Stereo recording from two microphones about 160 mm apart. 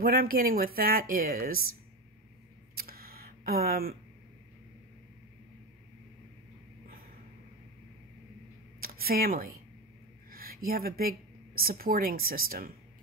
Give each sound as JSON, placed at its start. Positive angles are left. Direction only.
{"t": 0.0, "sound": "a woman's voice", "side_deg": -65}
{"t": 2.7, "sound": "a sound", "side_deg": -70}
{"t": 8.8, "sound": "speech", "side_deg": -70}